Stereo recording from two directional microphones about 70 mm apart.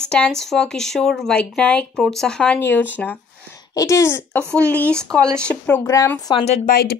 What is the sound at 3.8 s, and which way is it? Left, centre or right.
Speech, left.